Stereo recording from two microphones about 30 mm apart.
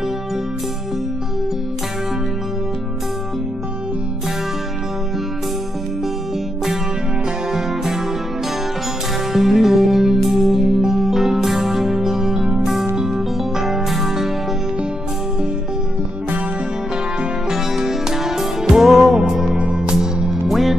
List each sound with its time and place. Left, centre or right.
7.5 s music: centre
9.3 s music: centre
17.5 s music: centre
20.4 s music: centre